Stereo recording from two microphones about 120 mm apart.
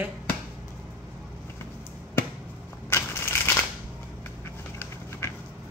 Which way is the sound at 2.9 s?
20° left (ahead or behind).